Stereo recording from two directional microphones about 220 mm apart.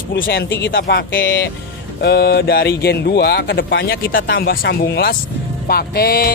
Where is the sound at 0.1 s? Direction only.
50° left (ahead or behind).